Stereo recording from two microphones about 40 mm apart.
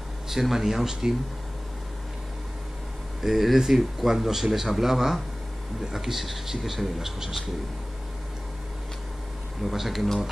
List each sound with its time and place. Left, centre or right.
0.3 s speech: centre
3.2 s speech: centre
9.6 s speech: centre